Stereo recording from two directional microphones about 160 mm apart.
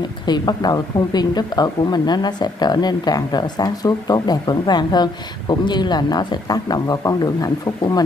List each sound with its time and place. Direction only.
0.3 s a woman's voice: 25° left (ahead or behind)